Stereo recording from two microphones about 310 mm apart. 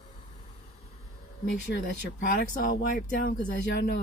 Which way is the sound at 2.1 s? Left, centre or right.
Left.